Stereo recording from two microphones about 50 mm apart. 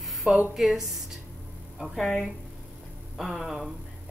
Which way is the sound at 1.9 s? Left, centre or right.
Left.